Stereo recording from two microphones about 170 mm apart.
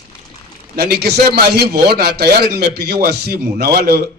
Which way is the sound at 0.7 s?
70° right (ahead or behind).